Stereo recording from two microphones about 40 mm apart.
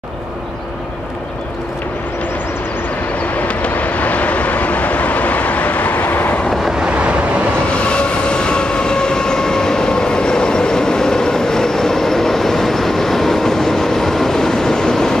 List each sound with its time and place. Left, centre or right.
3.3 s vehicle: left
6.9 s vehicle: right
7.9 s train: left